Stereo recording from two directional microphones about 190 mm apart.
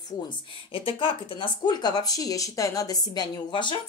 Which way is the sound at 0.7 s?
30° left (ahead or behind).